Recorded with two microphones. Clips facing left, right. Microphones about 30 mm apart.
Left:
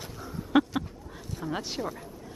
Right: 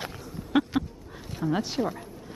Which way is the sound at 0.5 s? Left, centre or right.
Centre.